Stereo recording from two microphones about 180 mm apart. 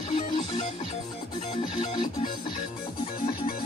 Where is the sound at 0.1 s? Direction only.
35° left (ahead or behind).